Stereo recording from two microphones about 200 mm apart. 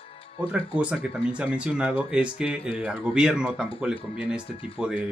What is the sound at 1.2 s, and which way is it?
Speech, 25° left (ahead or behind).